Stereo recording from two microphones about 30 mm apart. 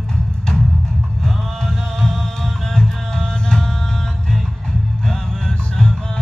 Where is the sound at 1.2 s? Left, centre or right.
Centre.